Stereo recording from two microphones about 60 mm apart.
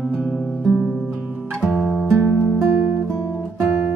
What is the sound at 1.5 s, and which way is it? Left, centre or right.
Music, centre.